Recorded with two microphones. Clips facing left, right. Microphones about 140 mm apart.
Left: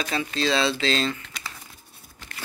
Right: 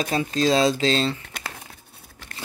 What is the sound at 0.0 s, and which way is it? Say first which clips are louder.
Speech: right 4 dB; 40° right (ahead or behind).